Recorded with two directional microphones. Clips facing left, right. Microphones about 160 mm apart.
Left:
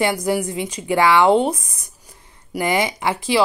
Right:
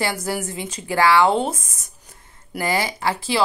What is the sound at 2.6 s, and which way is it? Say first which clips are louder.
Speech: left 2 dB; 20° left (ahead or behind).